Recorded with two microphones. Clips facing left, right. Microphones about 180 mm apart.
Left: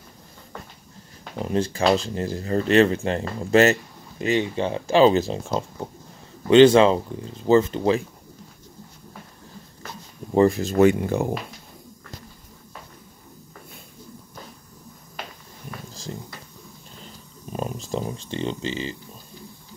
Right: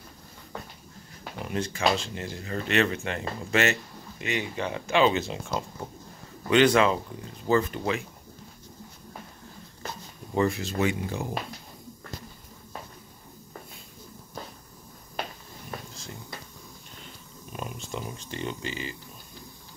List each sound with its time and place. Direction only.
1.4 s speech: 30° left (ahead or behind)
10.3 s speech: 40° left (ahead or behind); by 11.3 s 55° left (ahead or behind)
15.9 s a sound: 35° left (ahead or behind)
18.3 s speech: 30° left (ahead or behind)